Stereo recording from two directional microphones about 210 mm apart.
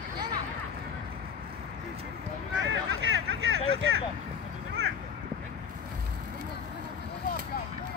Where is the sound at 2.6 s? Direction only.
60° right (ahead or behind).